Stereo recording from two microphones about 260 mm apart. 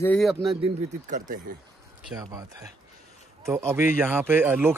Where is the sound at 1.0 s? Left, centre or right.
Right.